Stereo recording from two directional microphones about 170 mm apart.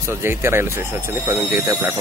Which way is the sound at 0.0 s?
15° right (ahead or behind).